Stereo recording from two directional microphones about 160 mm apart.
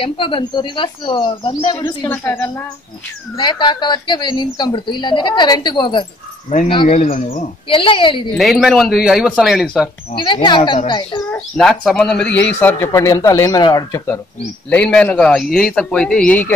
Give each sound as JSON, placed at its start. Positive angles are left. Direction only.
{"t": 0.0, "sound": "speech", "side_deg": 30}
{"t": 2.0, "sound": "speech", "side_deg": 10}
{"t": 3.3, "sound": "a woman's voice", "side_deg": 30}
{"t": 6.9, "sound": "speech", "side_deg": 50}
{"t": 7.6, "sound": "speech", "side_deg": 30}
{"t": 8.4, "sound": "speech", "side_deg": -5}
{"t": 10.1, "sound": "a woman's voice", "side_deg": 30}
{"t": 11.2, "sound": "speech", "side_deg": 5}